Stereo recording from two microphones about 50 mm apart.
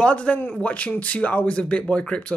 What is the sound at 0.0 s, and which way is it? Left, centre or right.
Speech, left.